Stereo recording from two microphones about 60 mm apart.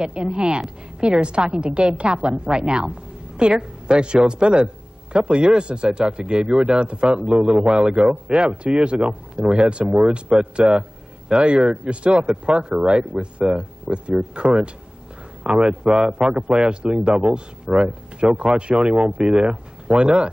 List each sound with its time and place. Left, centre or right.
0.0 s speech: centre